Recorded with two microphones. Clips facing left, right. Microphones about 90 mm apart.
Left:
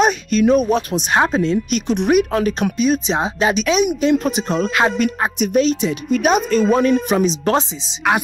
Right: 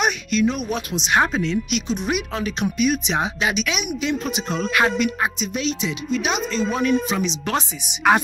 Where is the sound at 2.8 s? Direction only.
30° left (ahead or behind).